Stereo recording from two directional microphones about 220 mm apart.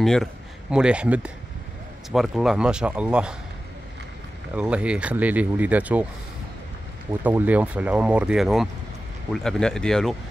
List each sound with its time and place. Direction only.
0.0 s a man's voice: centre (ahead or behind)
4.6 s speech: 5° right (ahead or behind)
7.2 s a man's voice: 5° right (ahead or behind)